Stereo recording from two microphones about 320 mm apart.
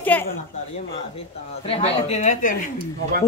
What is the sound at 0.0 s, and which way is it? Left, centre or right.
Speech, centre.